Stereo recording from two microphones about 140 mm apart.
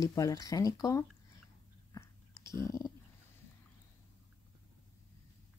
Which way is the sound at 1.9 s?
20° left (ahead or behind).